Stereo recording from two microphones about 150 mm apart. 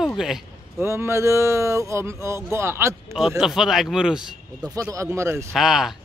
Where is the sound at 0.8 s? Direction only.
15° right (ahead or behind).